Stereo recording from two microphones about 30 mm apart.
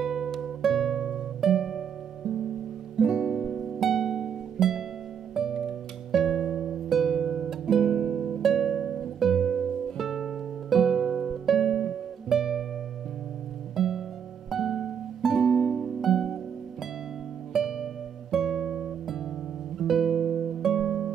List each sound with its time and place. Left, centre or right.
0.0 s music: centre
3.0 s music: right
3.4 s harp: centre
3.9 s music: centre
8.4 s music: centre
13.7 s music: centre
15.3 s music: centre
16.0 s music: centre
17.5 s music: centre